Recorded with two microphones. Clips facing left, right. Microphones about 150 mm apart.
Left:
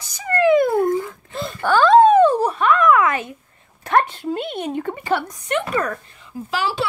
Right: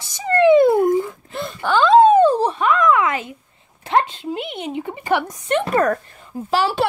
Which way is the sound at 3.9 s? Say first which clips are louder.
Left 1 dB; 20° right (ahead or behind).